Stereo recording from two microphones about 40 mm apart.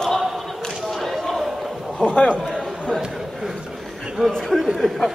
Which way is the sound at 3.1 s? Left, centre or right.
Centre.